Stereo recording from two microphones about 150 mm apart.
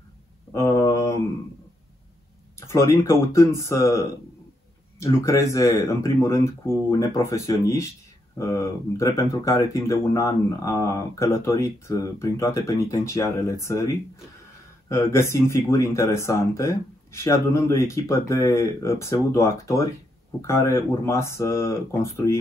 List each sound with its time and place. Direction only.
0.5 s mantra: 20° left (ahead or behind)
2.6 s speech: 20° left (ahead or behind)